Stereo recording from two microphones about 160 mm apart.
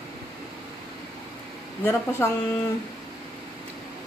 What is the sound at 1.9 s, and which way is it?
Speech, 15° left (ahead or behind).